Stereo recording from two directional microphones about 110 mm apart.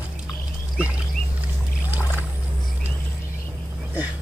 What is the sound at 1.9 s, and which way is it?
Boat, 15° right (ahead or behind).